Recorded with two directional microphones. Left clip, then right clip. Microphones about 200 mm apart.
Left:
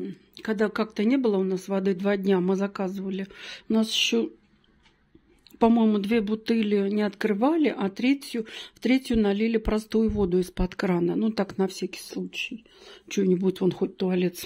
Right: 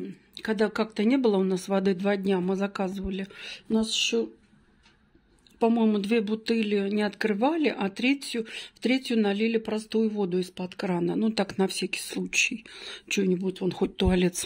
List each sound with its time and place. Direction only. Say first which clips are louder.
0.3 s speech: even; 5° left (ahead or behind)
5.6 s speech: left 2 dB; 10° left (ahead or behind)
10.9 s speech: left 1 dB; 5° left (ahead or behind)
12.3 s speech: right 8 dB; 15° right (ahead or behind)
12.9 s speech: left 2 dB; centre (ahead or behind)
13.4 s speech: left 5 dB; 25° left (ahead or behind)
13.7 s speech: right 1 dB; 10° right (ahead or behind)